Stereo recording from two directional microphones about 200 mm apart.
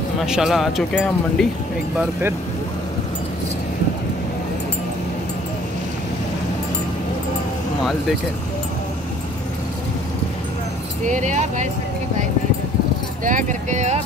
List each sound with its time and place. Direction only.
0.2 s speech: centre (ahead or behind)
11.1 s speech: 40° right (ahead or behind)
13.2 s speech: 40° right (ahead or behind)